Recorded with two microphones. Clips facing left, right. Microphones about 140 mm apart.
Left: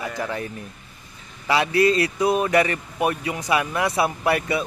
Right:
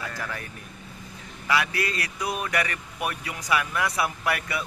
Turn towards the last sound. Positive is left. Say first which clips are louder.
# left 7 dB
turn(degrees=25)  # may be behind; listen again after turning